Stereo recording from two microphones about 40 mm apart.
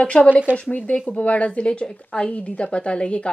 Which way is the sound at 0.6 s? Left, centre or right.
Left.